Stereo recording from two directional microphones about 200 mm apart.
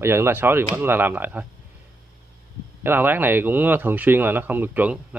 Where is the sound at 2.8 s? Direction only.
10° right (ahead or behind).